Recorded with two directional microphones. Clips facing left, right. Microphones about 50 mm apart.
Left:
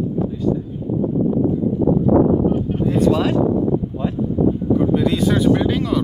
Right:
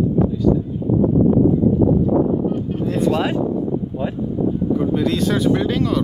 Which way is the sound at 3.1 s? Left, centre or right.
Centre.